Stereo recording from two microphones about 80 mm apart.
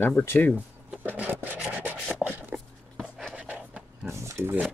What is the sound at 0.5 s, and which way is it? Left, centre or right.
Speech, right.